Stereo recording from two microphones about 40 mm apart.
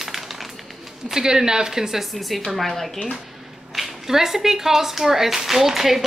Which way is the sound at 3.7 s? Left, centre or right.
Centre.